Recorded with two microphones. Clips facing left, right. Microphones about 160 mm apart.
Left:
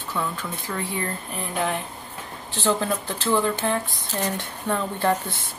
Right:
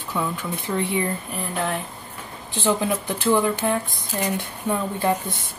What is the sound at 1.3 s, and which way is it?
Speech, centre (ahead or behind).